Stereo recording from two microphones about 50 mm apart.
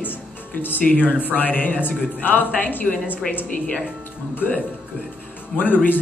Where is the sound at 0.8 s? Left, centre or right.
Left.